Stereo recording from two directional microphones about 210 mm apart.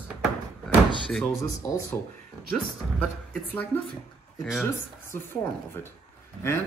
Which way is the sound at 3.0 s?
10° left (ahead or behind).